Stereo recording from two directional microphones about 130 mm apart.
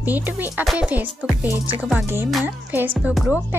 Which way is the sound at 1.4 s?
15° right (ahead or behind).